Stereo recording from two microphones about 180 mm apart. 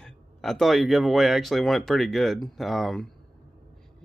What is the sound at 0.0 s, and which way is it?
A man's voice, centre (ahead or behind).